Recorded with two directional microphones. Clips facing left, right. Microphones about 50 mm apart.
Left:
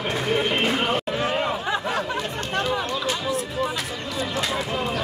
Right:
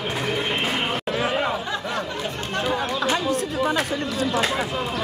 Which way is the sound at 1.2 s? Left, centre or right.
Centre.